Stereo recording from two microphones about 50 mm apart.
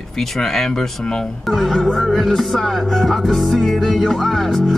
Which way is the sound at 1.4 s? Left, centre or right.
Centre.